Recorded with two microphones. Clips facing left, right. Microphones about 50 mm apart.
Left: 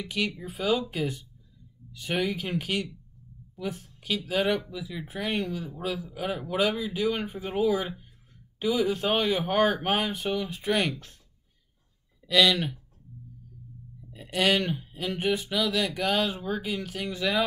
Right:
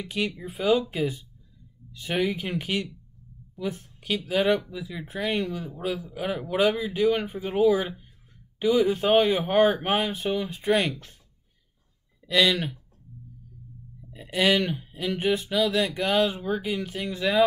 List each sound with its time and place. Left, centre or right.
0.4 s a man's voice: centre
6.1 s a man's voice: centre
12.2 s speech: centre
14.1 s a man's voice: centre